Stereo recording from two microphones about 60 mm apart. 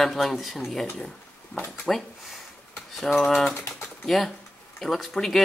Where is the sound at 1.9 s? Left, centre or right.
Centre.